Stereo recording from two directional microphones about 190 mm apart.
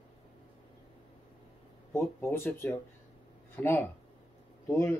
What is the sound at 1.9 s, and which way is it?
Speech, 10° left (ahead or behind).